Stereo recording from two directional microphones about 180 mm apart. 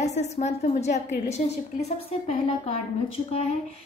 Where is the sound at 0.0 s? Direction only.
40° left (ahead or behind).